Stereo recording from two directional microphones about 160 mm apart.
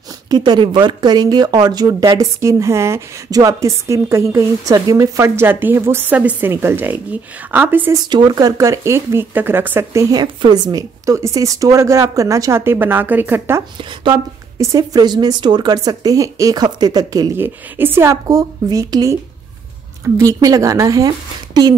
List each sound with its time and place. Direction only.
0.3 s speech: 30° right (ahead or behind); by 8.0 s 10° right (ahead or behind)
8.1 s speech: 25° right (ahead or behind)
13.7 s speech: 30° right (ahead or behind)
20.2 s speech: 20° right (ahead or behind)